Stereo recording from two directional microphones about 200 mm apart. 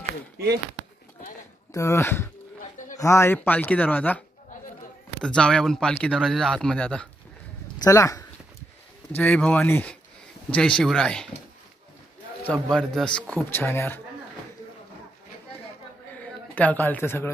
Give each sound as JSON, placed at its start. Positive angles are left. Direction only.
{"t": 1.7, "sound": "speech", "side_deg": 15}
{"t": 5.2, "sound": "speech", "side_deg": 5}
{"t": 7.8, "sound": "speech", "side_deg": 15}
{"t": 12.4, "sound": "speech", "side_deg": 5}
{"t": 16.5, "sound": "speech", "side_deg": 10}